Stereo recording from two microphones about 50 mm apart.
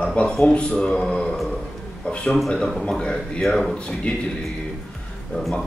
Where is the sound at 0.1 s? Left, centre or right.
Left; by 3.7 s centre.